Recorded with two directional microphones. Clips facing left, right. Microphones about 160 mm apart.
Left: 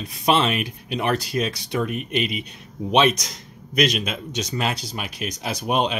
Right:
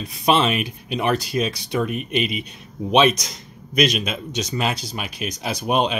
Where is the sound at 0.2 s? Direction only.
15° right (ahead or behind).